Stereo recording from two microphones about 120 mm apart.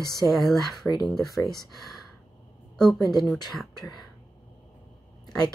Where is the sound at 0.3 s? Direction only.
Centre (ahead or behind).